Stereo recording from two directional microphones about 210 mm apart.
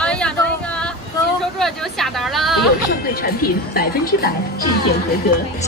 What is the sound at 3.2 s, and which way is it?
Speech, 50° left (ahead or behind).